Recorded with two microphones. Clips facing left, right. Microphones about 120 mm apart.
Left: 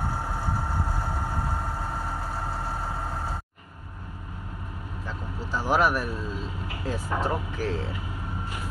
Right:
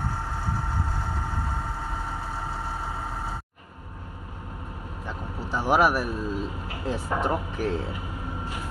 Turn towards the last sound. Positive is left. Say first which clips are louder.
# right 2 dB
turn(degrees=-15)  # may be behind; listen again after turning